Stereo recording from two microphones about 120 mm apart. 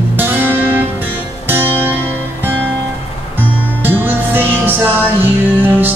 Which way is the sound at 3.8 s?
15° right (ahead or behind).